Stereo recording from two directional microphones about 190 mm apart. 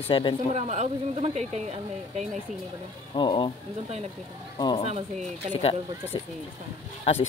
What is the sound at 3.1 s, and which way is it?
Speech, 25° left (ahead or behind).